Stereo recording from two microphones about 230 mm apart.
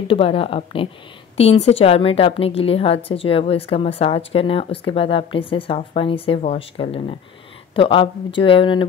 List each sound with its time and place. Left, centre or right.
0.1 s a woman's voice: left